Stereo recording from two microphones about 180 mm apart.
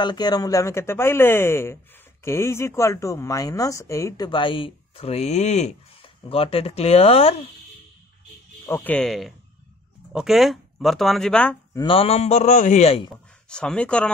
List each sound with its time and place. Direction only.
0.0 s speech: 25° left (ahead or behind)
8.6 s speech: 10° left (ahead or behind)
11.7 s a man's voice: 25° left (ahead or behind)
13.5 s speech: 5° left (ahead or behind)